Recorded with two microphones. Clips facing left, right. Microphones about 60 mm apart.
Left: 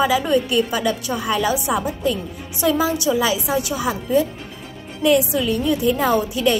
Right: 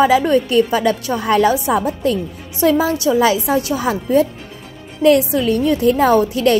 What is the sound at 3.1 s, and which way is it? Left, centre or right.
A woman's voice, right.